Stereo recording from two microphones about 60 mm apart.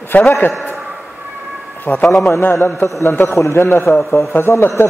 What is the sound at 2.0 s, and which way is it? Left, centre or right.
Speech, centre.